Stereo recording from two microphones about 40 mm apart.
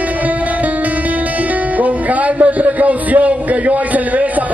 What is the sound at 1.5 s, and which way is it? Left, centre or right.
Music, right.